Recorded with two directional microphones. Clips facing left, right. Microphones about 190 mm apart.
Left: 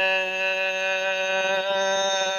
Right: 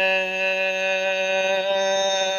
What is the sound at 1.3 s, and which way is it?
Mantra, 15° right (ahead or behind).